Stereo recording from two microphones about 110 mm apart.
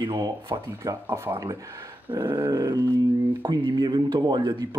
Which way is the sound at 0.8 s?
25° right (ahead or behind).